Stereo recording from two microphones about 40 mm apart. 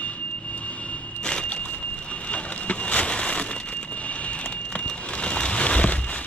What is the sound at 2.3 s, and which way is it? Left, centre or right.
Vehicle, left.